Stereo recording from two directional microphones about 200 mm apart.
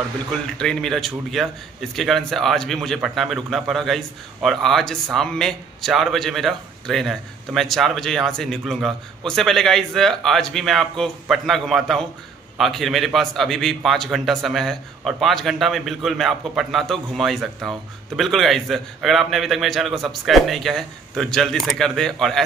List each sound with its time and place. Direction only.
0.6 s a man's voice: 5° left (ahead or behind)